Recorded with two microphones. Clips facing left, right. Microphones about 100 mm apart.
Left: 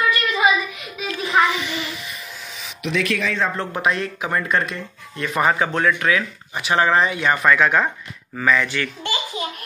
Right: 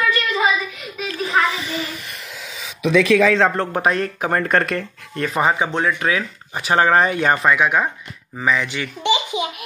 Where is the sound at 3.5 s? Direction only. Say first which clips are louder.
Right 3 dB; 45° right (ahead or behind).